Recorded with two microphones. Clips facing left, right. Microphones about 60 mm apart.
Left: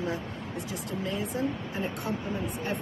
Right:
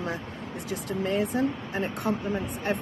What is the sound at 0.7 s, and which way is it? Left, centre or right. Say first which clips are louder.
Speech: right 6 dB; right.